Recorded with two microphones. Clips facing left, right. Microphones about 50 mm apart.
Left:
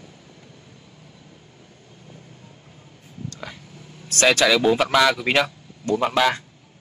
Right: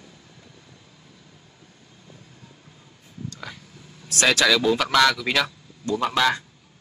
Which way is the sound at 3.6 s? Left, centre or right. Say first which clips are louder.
Left 4 dB; centre.